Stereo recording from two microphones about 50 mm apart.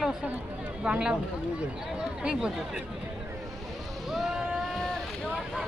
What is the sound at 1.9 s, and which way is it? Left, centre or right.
Chatter, right.